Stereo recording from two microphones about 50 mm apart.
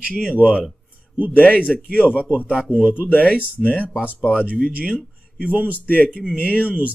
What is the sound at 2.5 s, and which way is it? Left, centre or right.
Speech, right.